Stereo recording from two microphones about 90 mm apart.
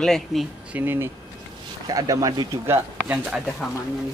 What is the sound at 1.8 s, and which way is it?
Speech, 40° right (ahead or behind).